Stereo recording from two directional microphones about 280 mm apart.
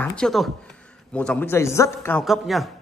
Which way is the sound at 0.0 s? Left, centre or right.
Centre.